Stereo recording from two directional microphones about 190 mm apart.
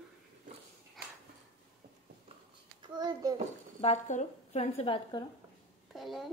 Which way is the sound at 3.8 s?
35° left (ahead or behind).